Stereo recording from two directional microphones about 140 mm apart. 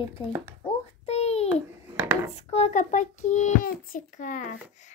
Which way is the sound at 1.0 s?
50° left (ahead or behind).